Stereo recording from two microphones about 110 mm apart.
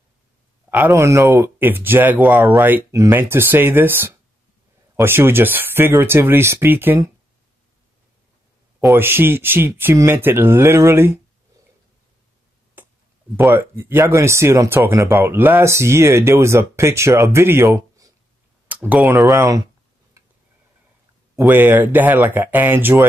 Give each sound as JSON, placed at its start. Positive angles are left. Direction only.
{"t": 0.7, "sound": "speech", "side_deg": -20}
{"t": 8.9, "sound": "speech", "side_deg": -20}
{"t": 12.8, "sound": "a sound", "side_deg": -15}
{"t": 13.4, "sound": "speech", "side_deg": -20}
{"t": 18.7, "sound": "speech", "side_deg": -15}
{"t": 19.2, "sound": "speech", "side_deg": -35}
{"t": 21.4, "sound": "speech", "side_deg": -20}